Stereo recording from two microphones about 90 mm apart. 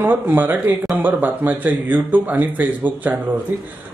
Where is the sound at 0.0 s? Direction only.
20° right (ahead or behind).